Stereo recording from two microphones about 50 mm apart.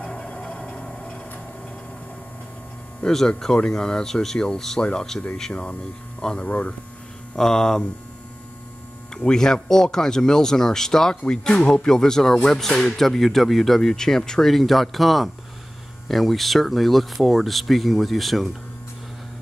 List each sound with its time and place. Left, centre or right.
0.0 s a sound: left
3.0 s speech: centre; by 6.7 s left
7.3 s speech: centre
9.1 s speech: centre